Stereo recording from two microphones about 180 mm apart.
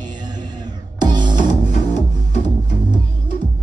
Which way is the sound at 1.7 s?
40° left (ahead or behind).